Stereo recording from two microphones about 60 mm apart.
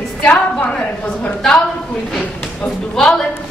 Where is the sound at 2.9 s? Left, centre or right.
Centre.